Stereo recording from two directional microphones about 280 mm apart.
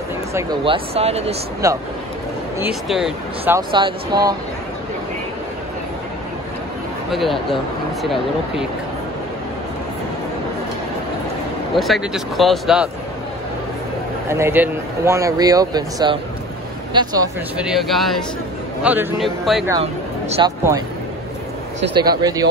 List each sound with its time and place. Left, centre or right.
0.3 s speech: centre
2.6 s speech: centre
7.1 s speech: centre
11.7 s speech: centre
14.3 s speech: centre
17.6 s speech: centre
19.7 s speech: right
22.2 s speech: centre